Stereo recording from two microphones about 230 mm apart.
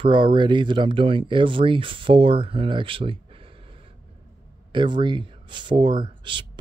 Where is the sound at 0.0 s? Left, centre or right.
Right.